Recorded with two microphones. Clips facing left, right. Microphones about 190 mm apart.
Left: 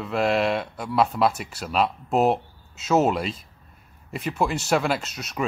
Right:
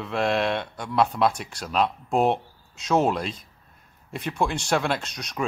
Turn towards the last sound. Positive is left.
turn(degrees=5)  # may be behind; listen again after turning